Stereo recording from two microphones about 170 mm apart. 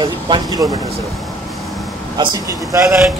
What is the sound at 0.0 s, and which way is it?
Speech, 25° right (ahead or behind).